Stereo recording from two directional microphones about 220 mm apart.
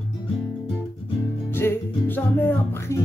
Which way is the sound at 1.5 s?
10° left (ahead or behind).